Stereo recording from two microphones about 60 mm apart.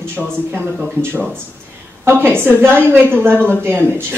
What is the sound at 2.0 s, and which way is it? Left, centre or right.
Speech, right.